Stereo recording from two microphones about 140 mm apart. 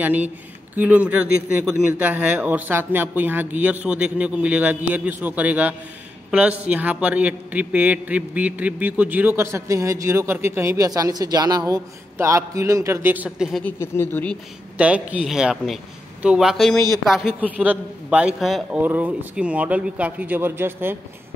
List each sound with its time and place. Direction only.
0.0 s a man's voice: 10° right (ahead or behind)
13.7 s speech: 15° left (ahead or behind)
14.8 s a man's voice: 10° right (ahead or behind)